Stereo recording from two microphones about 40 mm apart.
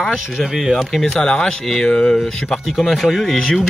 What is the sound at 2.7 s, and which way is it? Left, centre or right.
Music, centre.